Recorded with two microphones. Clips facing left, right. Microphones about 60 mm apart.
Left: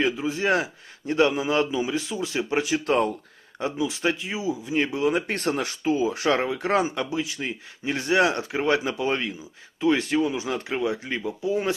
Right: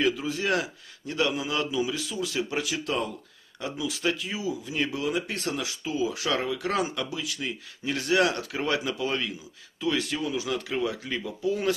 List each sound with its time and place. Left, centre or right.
0.0 s speech: left
2.8 s speech: left
3.5 s speech: left
5.2 s speech: left